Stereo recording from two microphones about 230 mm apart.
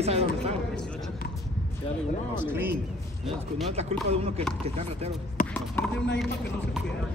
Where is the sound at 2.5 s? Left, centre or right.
Centre.